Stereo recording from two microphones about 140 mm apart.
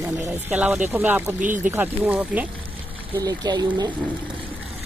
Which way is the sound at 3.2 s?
25° right (ahead or behind).